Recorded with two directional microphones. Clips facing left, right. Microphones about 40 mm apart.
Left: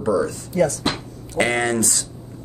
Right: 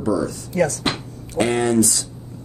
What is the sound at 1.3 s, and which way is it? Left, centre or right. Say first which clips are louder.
Speech: right 2 dB; left.